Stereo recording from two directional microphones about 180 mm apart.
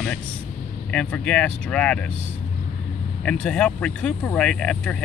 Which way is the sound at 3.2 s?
5° left (ahead or behind).